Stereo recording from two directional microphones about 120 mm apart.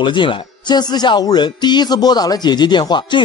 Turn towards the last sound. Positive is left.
turn(degrees=40)  # may be behind; listen again after turning